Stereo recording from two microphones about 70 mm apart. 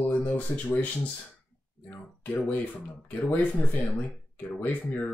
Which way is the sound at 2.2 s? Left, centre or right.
Left.